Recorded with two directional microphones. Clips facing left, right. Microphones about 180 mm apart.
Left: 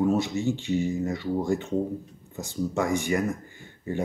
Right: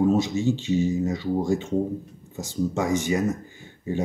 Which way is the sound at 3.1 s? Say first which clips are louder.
Right 2 dB; 20° right (ahead or behind).